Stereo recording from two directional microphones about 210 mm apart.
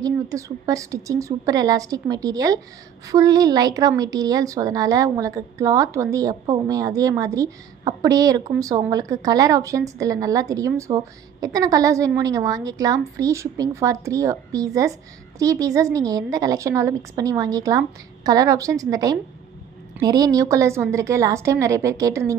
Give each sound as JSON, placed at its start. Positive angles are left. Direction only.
{"t": 0.0, "sound": "a woman's voice", "side_deg": -15}